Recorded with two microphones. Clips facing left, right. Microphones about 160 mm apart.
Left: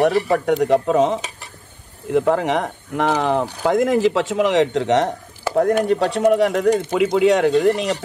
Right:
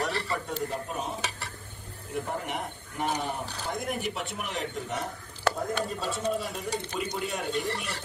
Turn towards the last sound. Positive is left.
turn(degrees=90)